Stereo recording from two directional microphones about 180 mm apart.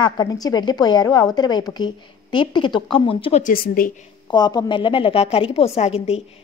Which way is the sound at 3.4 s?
55° left (ahead or behind).